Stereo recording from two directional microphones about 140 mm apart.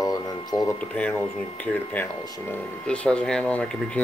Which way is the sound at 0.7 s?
10° left (ahead or behind).